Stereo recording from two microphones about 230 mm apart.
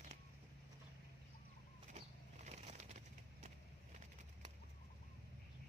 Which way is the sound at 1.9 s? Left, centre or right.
Right.